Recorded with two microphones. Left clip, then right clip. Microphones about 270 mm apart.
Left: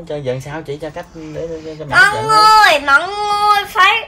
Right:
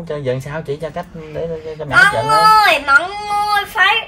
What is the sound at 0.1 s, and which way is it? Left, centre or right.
Speech, centre.